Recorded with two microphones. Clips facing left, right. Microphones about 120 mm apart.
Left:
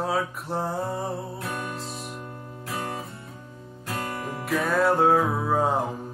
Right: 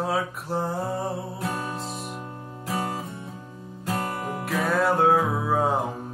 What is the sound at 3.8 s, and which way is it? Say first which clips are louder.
Music: right 3 dB; 25° right (ahead or behind).